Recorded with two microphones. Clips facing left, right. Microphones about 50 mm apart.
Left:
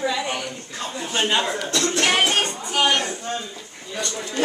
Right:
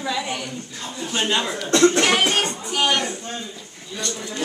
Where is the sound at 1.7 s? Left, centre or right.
Right.